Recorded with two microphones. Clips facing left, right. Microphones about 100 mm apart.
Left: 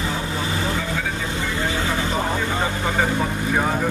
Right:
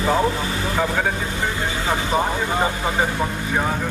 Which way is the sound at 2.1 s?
15° right (ahead or behind).